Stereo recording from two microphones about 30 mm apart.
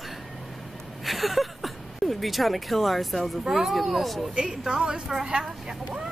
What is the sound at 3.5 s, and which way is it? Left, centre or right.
Speech, centre.